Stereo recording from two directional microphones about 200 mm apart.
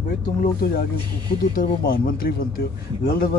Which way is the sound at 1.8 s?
45° left (ahead or behind).